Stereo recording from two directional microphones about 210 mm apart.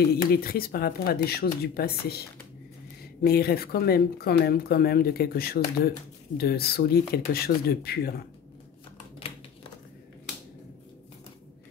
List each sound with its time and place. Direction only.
0.3 s speech: 45° left (ahead or behind)